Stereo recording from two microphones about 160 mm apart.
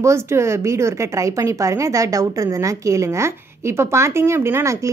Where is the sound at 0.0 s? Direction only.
15° right (ahead or behind).